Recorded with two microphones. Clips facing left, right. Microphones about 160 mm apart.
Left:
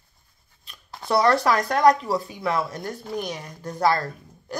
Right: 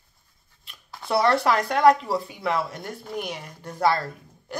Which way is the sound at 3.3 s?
25° right (ahead or behind).